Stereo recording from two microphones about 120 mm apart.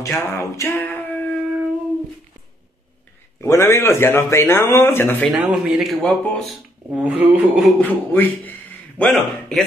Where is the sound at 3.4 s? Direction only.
20° left (ahead or behind).